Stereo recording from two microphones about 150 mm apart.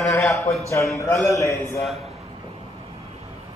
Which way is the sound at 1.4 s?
20° left (ahead or behind).